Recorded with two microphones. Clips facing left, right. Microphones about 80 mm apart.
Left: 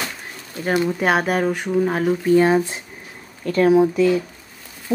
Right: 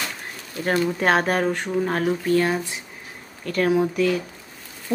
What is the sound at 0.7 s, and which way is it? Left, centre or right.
Speech, centre.